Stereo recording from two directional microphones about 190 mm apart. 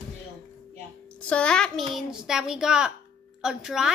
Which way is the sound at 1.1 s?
5° left (ahead or behind).